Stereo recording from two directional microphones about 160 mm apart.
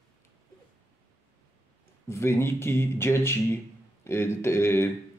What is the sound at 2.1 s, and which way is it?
Speech, 15° left (ahead or behind).